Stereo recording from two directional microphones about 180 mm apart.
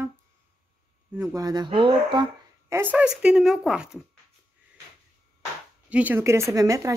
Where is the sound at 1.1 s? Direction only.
15° right (ahead or behind).